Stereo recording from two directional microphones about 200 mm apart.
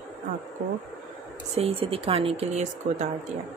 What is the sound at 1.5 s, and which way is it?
A woman's voice, 30° right (ahead or behind).